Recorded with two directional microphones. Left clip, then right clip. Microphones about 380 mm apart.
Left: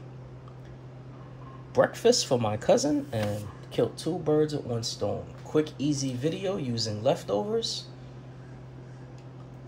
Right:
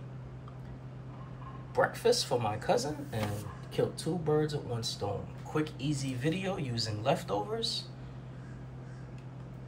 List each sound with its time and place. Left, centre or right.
1.7 s speech: centre